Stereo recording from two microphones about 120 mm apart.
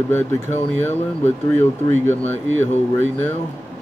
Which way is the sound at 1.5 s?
20° left (ahead or behind).